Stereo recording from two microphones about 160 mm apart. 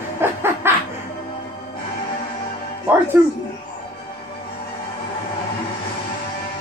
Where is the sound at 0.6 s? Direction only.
15° right (ahead or behind).